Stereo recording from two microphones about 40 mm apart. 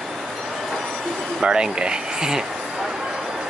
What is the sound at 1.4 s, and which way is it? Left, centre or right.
Speech, centre.